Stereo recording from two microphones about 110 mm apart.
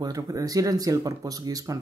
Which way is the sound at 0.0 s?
35° right (ahead or behind).